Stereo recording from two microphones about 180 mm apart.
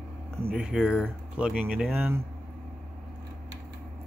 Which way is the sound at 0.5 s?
5° right (ahead or behind).